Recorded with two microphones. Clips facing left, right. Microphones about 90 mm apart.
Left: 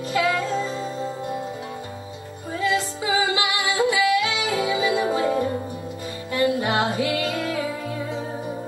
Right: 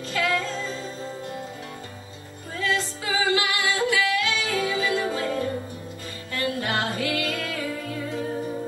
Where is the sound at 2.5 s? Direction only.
15° left (ahead or behind).